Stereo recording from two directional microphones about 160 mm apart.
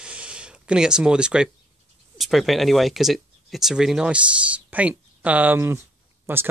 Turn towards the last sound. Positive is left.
turn(degrees=-15)  # may be behind; listen again after turning